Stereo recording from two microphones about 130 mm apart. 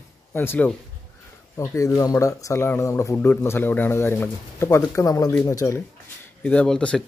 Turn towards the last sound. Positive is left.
turn(degrees=5)  # may be behind; listen again after turning